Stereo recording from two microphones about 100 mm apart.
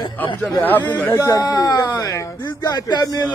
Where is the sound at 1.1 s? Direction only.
35° left (ahead or behind).